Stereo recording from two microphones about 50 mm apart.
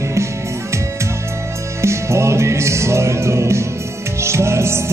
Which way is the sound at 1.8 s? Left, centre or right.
Right.